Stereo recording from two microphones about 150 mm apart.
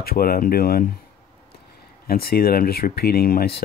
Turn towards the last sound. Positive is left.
turn(degrees=90)